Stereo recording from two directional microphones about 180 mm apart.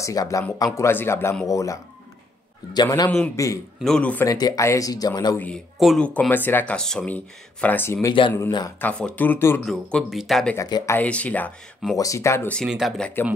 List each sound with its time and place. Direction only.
0.0 s speech: 20° left (ahead or behind)
3.8 s speech: 5° left (ahead or behind)
4.3 s speech: 20° left (ahead or behind)
5.4 s speech: centre (ahead or behind)
8.5 s speech: 25° left (ahead or behind)
8.7 s speech: 10° left (ahead or behind)
10.5 s speech: 15° left (ahead or behind)
12.6 s speech: centre (ahead or behind)